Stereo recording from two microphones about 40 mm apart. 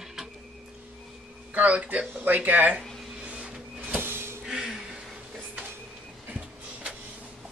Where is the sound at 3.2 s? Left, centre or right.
Right.